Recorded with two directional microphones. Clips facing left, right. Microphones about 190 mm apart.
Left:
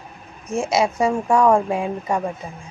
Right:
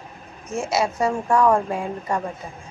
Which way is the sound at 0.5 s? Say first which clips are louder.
Left 3 dB; 15° left (ahead or behind).